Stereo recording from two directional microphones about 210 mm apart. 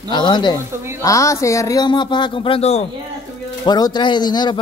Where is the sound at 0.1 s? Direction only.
20° left (ahead or behind).